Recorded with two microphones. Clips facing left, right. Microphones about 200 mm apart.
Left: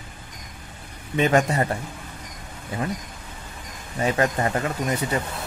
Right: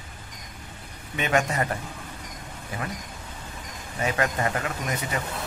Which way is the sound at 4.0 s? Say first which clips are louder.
Left 4 dB; 30° left (ahead or behind).